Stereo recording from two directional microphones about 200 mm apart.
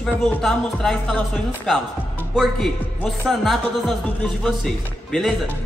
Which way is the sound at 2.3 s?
Centre (ahead or behind).